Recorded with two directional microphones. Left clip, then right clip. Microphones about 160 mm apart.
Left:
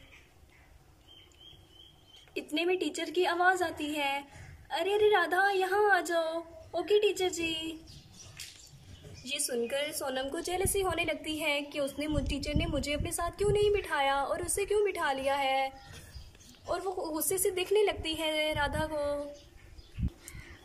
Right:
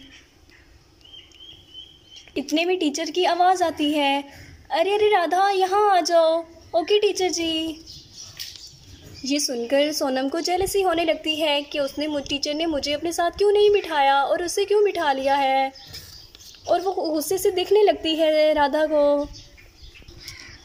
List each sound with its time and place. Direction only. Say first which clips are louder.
2.3 s a woman's voice: right 8 dB; 20° right (ahead or behind)
9.5 s a woman's voice: right 11 dB; 25° right (ahead or behind)